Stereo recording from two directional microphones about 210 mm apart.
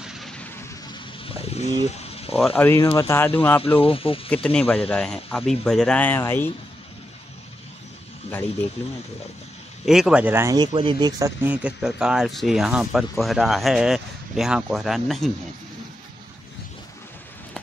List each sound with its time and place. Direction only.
0.0 s vehicle: centre (ahead or behind)
1.2 s vehicle: 25° left (ahead or behind)
1.9 s a sound: 30° left (ahead or behind)
2.3 s speech: 5° left (ahead or behind)
3.6 s speech: 25° left (ahead or behind)
4.3 s speech: 5° left (ahead or behind)
9.8 s speech: centre (ahead or behind)